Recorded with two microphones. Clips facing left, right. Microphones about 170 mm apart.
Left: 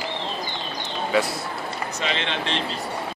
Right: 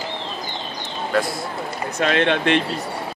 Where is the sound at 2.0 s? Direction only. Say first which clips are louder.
Right 10 dB; 55° right (ahead or behind).